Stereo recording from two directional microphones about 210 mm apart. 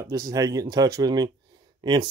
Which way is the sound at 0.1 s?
15° right (ahead or behind).